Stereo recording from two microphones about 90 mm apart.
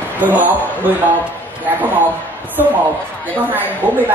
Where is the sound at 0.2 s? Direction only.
20° right (ahead or behind).